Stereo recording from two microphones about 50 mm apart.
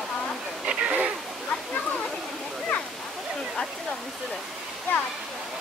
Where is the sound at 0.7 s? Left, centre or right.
Right.